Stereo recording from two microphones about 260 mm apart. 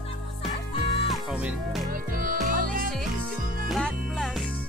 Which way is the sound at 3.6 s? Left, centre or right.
Centre.